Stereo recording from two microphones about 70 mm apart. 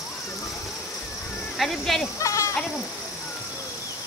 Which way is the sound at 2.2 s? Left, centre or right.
Left.